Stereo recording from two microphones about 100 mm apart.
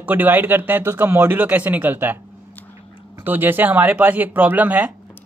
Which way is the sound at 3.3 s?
20° right (ahead or behind).